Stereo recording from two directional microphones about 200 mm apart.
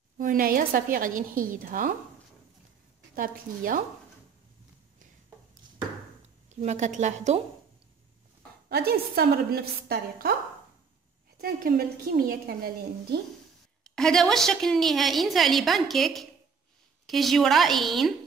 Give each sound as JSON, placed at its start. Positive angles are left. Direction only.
{"t": 0.2, "sound": "a woman's voice", "side_deg": -45}
{"t": 3.2, "sound": "a woman's voice", "side_deg": -45}
{"t": 6.5, "sound": "a woman's voice", "side_deg": -35}
{"t": 8.6, "sound": "a woman's voice", "side_deg": -50}
{"t": 11.3, "sound": "a woman's voice", "side_deg": -50}
{"t": 13.8, "sound": "a woman's voice", "side_deg": 5}